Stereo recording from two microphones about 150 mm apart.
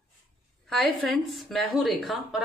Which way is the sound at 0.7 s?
Centre (ahead or behind).